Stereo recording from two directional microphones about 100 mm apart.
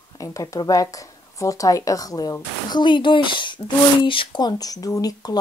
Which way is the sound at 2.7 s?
50° left (ahead or behind).